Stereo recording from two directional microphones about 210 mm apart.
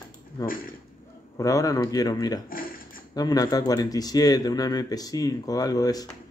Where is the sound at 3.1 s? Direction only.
15° left (ahead or behind).